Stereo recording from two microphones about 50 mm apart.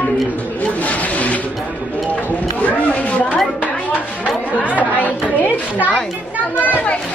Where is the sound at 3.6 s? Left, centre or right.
Left.